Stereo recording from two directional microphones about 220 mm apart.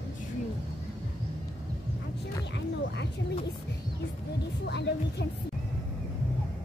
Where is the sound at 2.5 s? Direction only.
50° left (ahead or behind).